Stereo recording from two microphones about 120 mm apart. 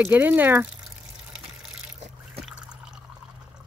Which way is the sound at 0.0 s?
15° right (ahead or behind).